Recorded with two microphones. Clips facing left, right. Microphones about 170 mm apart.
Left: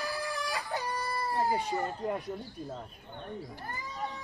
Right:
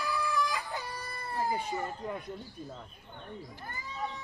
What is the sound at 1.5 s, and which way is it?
Speech, 35° left (ahead or behind).